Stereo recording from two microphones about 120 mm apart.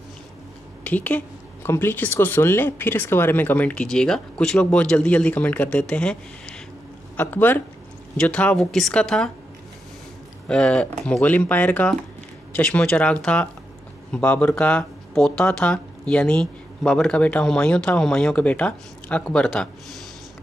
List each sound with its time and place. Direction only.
0.8 s speech: 15° left (ahead or behind)
10.5 s speech: 10° left (ahead or behind)